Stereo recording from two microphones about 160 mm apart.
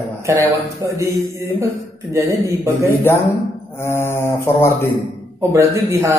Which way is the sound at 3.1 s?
15° left (ahead or behind).